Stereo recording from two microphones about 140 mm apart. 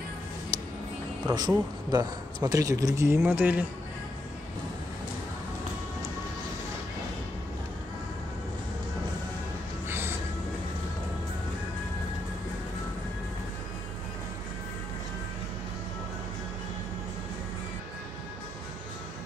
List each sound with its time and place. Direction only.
0.5 s music: 25° right (ahead or behind)
1.2 s speech: 30° right (ahead or behind); by 3.6 s 15° right (ahead or behind)
9.8 s music: 15° right (ahead or behind)